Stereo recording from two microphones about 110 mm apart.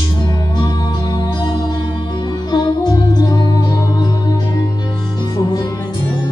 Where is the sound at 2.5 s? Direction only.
40° left (ahead or behind).